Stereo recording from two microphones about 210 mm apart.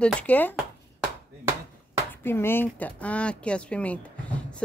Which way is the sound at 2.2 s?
10° left (ahead or behind).